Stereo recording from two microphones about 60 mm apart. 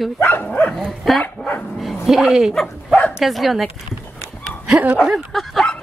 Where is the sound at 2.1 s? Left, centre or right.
Centre.